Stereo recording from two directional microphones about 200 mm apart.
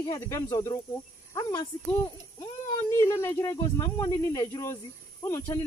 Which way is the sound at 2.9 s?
15° left (ahead or behind).